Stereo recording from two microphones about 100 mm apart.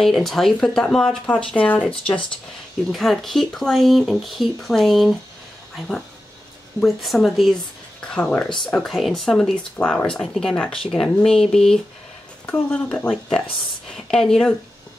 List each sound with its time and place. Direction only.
0.0 s speech: 5° left (ahead or behind)
2.9 s speech: centre (ahead or behind)
8.1 s speech: 10° left (ahead or behind)
12.4 s speech: 20° left (ahead or behind)
13.8 s speech: 5° left (ahead or behind)